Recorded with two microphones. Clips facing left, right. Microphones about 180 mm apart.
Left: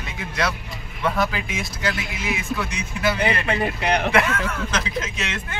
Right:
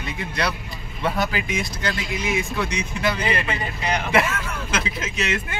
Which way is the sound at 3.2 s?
60° left (ahead or behind).